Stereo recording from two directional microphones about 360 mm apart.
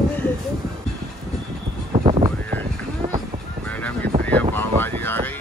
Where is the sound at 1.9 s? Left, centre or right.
Centre.